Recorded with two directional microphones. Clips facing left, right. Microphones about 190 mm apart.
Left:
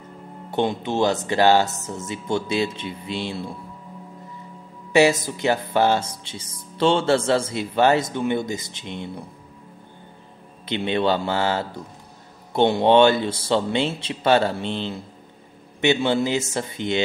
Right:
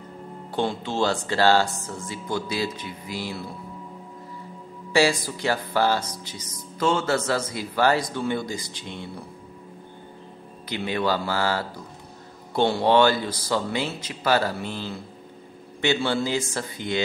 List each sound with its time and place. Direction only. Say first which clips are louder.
0.5 s speech: left 4 dB; 20° left (ahead or behind)
4.9 s speech: left 4 dB; 20° left (ahead or behind)
10.7 s speech: left 4 dB; 25° left (ahead or behind)